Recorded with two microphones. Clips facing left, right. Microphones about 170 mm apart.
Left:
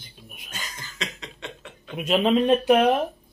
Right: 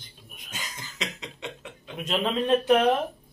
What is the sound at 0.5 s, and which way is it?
Cough, 15° right (ahead or behind).